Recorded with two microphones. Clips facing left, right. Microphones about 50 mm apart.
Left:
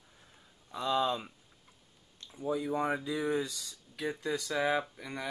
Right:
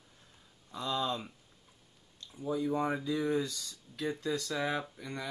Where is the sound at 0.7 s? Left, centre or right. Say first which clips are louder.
Left 4 dB; left.